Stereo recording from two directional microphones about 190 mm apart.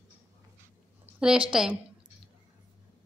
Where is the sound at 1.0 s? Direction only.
5° right (ahead or behind).